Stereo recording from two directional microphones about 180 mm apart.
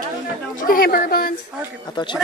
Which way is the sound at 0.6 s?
55° left (ahead or behind).